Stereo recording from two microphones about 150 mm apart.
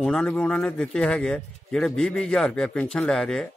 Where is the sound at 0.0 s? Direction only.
5° left (ahead or behind).